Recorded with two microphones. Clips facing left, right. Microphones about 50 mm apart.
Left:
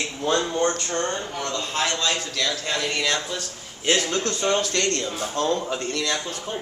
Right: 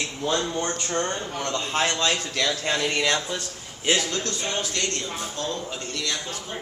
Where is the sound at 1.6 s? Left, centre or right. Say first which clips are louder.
Right 1 dB; centre.